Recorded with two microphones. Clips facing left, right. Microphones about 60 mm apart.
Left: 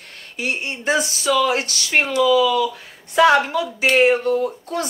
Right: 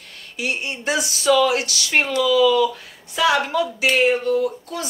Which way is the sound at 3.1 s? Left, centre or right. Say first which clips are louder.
Left 4 dB; left.